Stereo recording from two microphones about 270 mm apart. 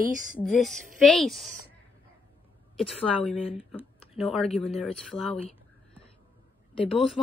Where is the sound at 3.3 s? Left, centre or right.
Left.